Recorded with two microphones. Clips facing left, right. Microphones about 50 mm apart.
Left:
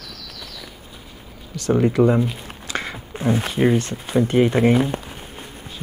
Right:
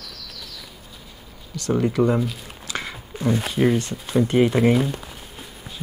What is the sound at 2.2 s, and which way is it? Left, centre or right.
Speech, left.